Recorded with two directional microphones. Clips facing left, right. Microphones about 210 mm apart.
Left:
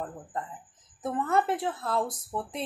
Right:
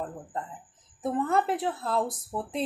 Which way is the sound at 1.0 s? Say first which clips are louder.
Right 1 dB; 35° right (ahead or behind).